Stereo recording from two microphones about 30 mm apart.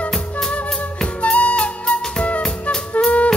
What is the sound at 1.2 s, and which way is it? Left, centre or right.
Flute, left.